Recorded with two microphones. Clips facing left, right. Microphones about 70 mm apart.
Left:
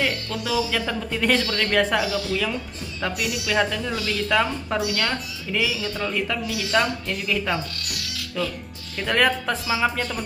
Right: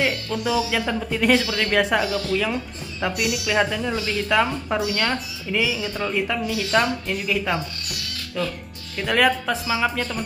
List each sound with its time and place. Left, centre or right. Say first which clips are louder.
0.0 s a woman's voice: right 3 dB; centre
4.3 s a woman's voice: right 2 dB; centre
5.6 s a woman's voice: right 1 dB; centre
8.9 s a woman's voice: right 1 dB; centre